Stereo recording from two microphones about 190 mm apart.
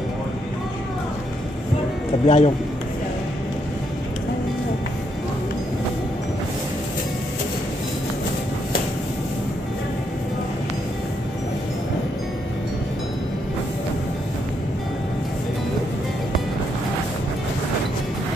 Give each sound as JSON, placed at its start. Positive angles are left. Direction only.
{"t": 2.2, "sound": "speech", "side_deg": 35}